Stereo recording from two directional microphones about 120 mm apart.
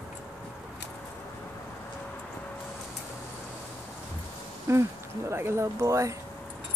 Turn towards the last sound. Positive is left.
turn(degrees=-25)  # may be behind; listen again after turning